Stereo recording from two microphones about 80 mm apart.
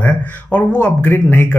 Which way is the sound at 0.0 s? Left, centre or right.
Centre.